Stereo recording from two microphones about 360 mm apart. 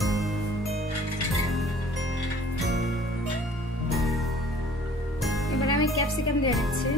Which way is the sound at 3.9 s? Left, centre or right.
Centre.